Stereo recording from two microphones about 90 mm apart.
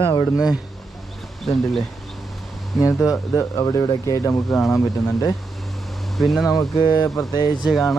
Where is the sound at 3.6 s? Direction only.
45° left (ahead or behind).